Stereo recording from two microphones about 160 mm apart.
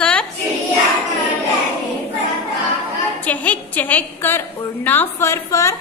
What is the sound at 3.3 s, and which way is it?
A woman's voice, 10° left (ahead or behind).